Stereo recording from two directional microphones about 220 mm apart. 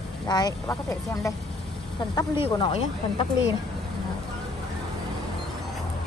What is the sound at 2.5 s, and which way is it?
Speech, 20° left (ahead or behind).